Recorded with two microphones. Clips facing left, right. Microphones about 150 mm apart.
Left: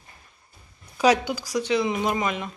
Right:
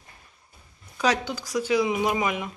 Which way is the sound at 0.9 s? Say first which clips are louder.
Left 5 dB; 10° left (ahead or behind).